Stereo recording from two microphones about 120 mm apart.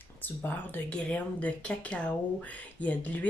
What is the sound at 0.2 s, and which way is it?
Speech, 15° left (ahead or behind).